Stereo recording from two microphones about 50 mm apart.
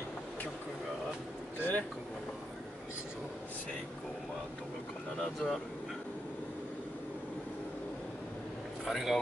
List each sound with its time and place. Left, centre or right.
1.6 s a sound: left
5.2 s speech: centre
8.8 s speech: centre